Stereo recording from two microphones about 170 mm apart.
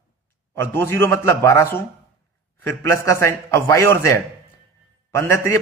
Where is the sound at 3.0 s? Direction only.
15° left (ahead or behind).